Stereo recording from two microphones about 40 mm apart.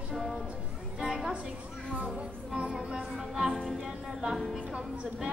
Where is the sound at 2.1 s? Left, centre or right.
Right.